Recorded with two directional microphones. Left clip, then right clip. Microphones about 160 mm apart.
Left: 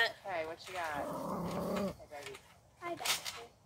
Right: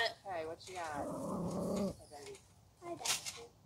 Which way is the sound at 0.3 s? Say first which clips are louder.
Left 3 dB; 35° right (ahead or behind).